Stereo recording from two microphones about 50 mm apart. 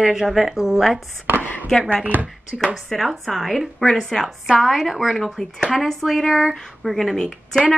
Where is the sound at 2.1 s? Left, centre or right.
Right.